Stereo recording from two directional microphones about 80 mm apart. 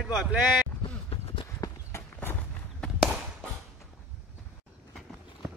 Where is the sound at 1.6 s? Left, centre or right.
Left.